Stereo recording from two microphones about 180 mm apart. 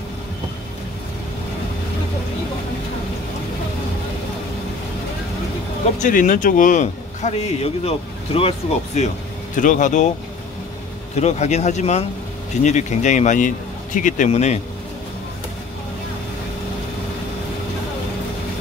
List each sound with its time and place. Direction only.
5.9 s a man's voice: 45° left (ahead or behind)
11.1 s a man's voice: 40° left (ahead or behind)